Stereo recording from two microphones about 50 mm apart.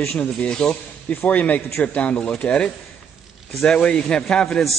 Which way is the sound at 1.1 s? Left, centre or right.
Left.